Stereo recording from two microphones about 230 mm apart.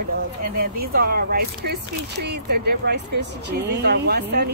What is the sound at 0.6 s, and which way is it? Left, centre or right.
Speech, right.